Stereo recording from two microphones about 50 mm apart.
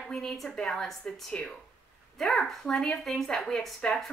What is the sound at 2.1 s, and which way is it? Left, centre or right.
A woman's voice, centre.